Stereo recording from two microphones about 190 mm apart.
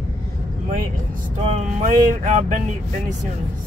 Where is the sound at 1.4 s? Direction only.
35° right (ahead or behind).